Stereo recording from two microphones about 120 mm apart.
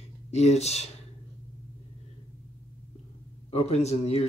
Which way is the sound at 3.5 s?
60° left (ahead or behind).